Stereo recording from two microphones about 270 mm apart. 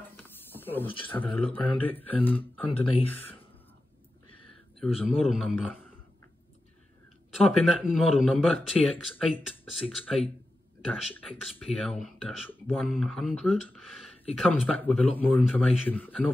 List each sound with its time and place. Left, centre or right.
0.2 s a sound: centre
0.8 s speech: centre
1.1 s speech: centre
4.7 s speech: centre
7.3 s speech: centre